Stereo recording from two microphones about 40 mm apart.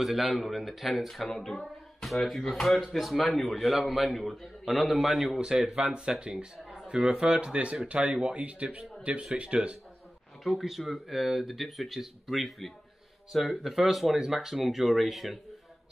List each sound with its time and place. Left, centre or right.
0.0 s a man's voice: centre
1.2 s a man's voice: centre
5.4 s speech: centre
10.6 s a man's voice: centre